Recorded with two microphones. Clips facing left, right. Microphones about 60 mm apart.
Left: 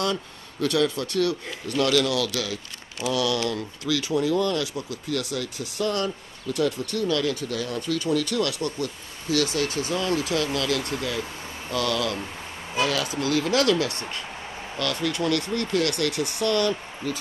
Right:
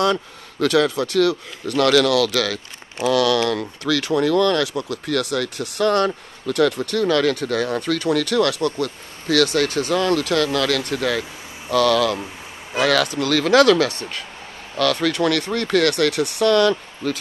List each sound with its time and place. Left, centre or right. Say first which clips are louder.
0.0 s speech: right 7 dB; right
3.1 s speech: right 7 dB; right
12.7 s speech: right 7 dB; right